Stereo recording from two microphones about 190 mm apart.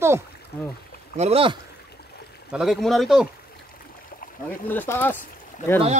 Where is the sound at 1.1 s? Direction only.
30° right (ahead or behind).